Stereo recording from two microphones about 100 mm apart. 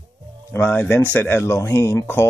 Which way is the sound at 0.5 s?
20° left (ahead or behind).